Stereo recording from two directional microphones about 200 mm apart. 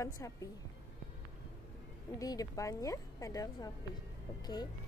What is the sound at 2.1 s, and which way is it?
Speech, 15° left (ahead or behind).